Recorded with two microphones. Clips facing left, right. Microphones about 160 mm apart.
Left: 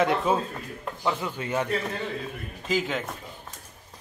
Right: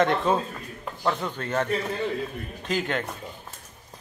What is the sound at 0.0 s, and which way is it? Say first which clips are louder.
A man's voice: right 1 dB; 5° left (ahead or behind).